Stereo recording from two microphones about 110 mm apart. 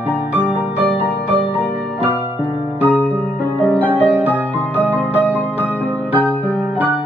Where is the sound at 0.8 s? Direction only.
15° left (ahead or behind).